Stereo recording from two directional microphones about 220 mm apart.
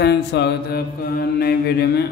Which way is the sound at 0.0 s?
50° left (ahead or behind).